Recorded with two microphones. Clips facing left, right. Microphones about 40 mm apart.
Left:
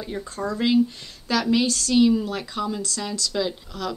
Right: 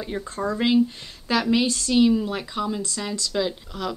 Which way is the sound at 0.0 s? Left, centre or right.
Centre.